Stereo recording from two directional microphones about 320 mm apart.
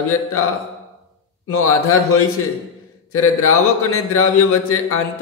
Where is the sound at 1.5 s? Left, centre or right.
Left.